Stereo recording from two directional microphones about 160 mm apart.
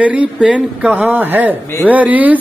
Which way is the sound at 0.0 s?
10° right (ahead or behind).